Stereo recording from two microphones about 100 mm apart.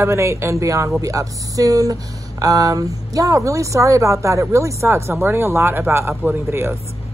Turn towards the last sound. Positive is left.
turn(degrees=-25)  # may be behind; listen again after turning